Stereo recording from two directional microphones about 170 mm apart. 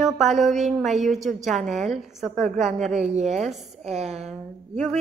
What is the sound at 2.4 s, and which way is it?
A woman's voice, 45° right (ahead or behind).